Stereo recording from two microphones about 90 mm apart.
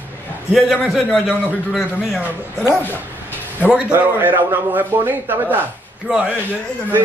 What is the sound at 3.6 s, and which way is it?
Speech, 10° right (ahead or behind).